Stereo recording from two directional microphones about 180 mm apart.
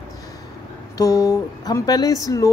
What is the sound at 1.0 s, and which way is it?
Speech, 20° left (ahead or behind).